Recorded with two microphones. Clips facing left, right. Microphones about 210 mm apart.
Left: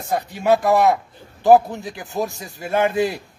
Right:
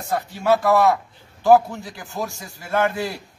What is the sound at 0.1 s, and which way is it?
A man's voice, 15° left (ahead or behind).